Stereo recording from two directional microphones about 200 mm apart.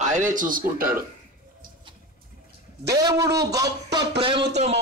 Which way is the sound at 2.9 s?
15° right (ahead or behind).